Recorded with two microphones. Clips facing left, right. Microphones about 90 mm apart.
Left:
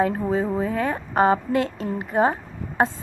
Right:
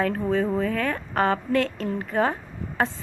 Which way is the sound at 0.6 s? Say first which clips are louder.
Left 1 dB; 25° left (ahead or behind).